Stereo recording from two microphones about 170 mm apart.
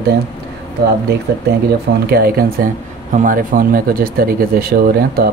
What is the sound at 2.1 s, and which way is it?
Speech, 60° right (ahead or behind).